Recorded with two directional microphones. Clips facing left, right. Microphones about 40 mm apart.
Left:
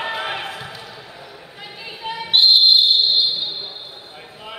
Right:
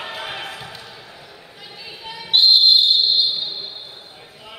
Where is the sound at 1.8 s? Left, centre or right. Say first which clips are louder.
Left 6 dB; left.